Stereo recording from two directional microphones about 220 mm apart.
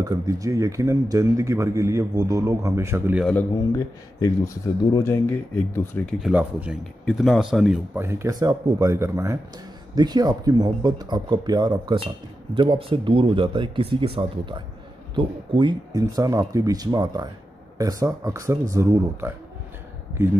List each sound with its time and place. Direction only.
0.0 s speech: 15° right (ahead or behind)
3.3 s speech: 10° left (ahead or behind); by 19.3 s 15° right (ahead or behind)